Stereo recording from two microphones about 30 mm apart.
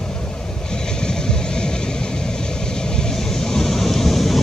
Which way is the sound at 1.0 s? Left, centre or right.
Left.